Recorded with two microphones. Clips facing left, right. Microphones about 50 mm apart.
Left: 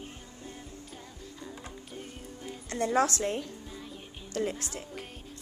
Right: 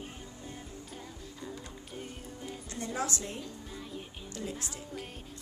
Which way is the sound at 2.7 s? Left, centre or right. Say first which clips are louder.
Left 9 dB; left.